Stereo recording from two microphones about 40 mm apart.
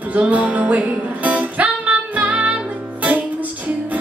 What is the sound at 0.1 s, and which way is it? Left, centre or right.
Music, right.